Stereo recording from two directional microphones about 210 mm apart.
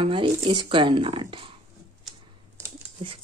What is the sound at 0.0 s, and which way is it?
Speech, 25° right (ahead or behind).